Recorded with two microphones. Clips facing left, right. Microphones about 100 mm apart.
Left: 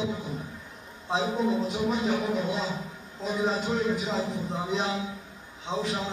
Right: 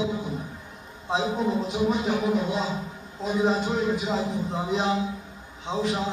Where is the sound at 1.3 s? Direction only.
10° right (ahead or behind).